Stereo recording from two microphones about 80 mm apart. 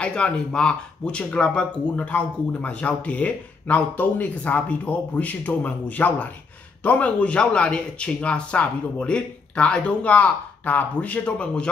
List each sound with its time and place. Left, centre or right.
0.0 s speech: centre